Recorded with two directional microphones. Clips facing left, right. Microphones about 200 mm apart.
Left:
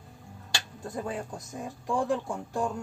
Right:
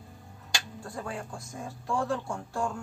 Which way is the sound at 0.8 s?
20° left (ahead or behind).